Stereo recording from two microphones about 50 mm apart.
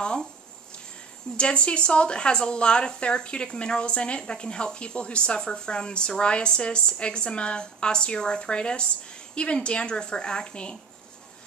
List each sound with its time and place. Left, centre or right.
0.0 s speech: centre
1.3 s speech: left